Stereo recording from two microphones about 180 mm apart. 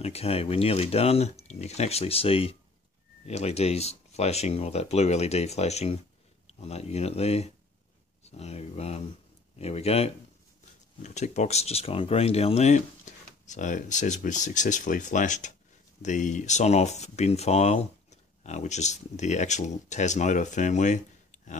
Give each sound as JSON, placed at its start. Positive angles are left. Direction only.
{"t": 0.0, "sound": "speech", "side_deg": 35}